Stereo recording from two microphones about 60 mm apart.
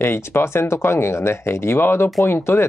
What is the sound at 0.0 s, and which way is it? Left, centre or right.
Speech, left.